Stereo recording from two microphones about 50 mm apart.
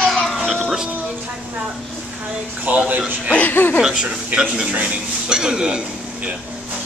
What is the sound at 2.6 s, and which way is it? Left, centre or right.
Speech, right.